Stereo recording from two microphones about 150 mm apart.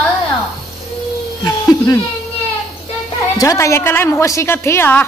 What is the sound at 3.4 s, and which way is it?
A woman's voice, 20° left (ahead or behind).